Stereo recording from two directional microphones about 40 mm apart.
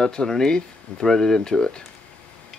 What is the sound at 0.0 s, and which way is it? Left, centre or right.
Speech, centre.